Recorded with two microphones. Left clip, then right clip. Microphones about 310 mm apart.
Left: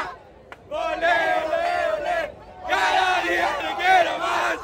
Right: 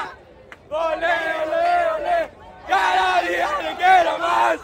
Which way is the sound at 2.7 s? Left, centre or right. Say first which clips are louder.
Right 2 dB; centre.